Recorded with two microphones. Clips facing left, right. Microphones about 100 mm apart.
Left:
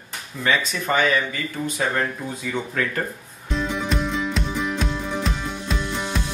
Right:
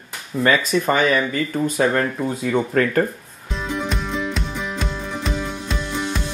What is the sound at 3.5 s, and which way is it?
Music, centre (ahead or behind).